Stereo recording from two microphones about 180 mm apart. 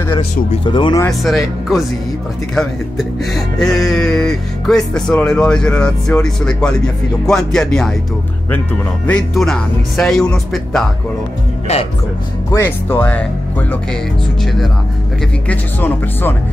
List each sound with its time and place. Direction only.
0.7 s speech: 25° left (ahead or behind)
1.2 s speech: centre (ahead or behind)
9.0 s speech: 5° left (ahead or behind)
11.7 s speech: 35° left (ahead or behind)
12.4 s speech: 15° left (ahead or behind)